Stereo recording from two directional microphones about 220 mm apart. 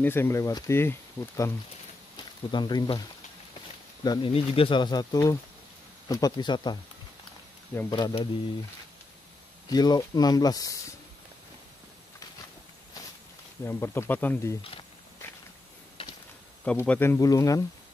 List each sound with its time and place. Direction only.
0.0 s speech: 10° left (ahead or behind)
2.5 s speech: 20° left (ahead or behind)
4.0 s speech: 20° left (ahead or behind)
7.9 s speech: 25° left (ahead or behind)
9.7 s speech: 20° left (ahead or behind)
13.7 s speech: 10° left (ahead or behind)
16.6 s speech: 5° left (ahead or behind)